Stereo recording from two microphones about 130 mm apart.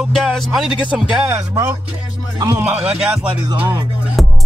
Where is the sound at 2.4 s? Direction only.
20° right (ahead or behind).